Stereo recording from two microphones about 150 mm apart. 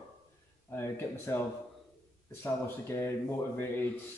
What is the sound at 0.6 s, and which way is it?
Speech, 15° left (ahead or behind).